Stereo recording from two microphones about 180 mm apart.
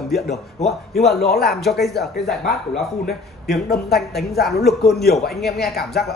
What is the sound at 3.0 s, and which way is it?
Speech, 60° left (ahead or behind).